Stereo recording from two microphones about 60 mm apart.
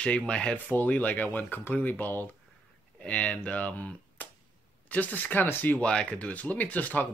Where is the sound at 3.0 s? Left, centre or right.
Left.